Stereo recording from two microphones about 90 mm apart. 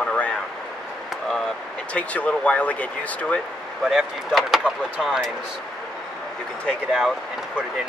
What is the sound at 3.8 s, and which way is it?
Speech, 5° right (ahead or behind).